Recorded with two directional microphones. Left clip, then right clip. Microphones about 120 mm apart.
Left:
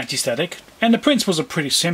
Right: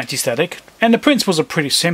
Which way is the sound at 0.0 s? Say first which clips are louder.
Right 3 dB; 25° right (ahead or behind).